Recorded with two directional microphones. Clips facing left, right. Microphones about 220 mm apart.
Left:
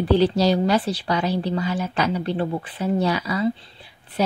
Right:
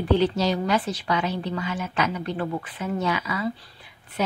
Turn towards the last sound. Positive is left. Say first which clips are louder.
# left 4 dB
turn(degrees=35)  # may be behind; listen again after turning